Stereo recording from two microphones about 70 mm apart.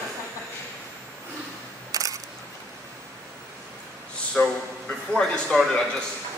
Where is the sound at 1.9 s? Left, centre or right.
Right.